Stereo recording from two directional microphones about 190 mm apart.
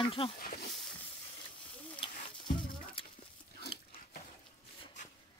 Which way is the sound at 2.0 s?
25° left (ahead or behind).